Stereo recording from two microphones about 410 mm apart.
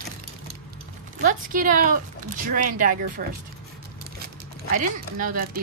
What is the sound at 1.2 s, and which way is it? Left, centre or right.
Speech, centre.